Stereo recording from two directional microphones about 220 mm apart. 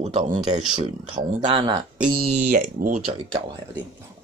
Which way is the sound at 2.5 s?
35° right (ahead or behind).